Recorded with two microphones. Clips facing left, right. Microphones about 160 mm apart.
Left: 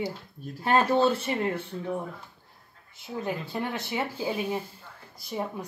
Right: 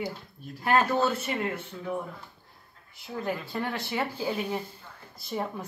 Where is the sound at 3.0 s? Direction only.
20° left (ahead or behind).